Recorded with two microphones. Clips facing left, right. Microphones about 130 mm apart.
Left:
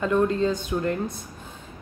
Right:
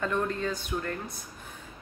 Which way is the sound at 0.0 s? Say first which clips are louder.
Left 8 dB; 20° left (ahead or behind).